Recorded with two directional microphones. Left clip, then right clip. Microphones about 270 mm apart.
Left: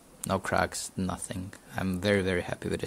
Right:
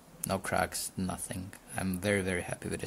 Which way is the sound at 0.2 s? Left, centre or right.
Centre.